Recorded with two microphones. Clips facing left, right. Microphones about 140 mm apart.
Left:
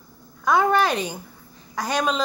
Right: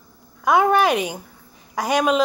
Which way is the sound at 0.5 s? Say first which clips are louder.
Right 3 dB; 10° right (ahead or behind).